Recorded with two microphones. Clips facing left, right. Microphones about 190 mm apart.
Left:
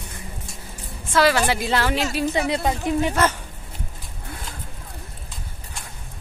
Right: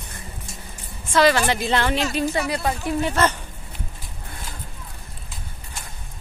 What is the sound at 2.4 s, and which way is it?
Speech, 25° left (ahead or behind).